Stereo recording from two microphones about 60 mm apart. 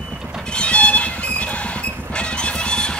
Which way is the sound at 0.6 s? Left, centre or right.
Centre.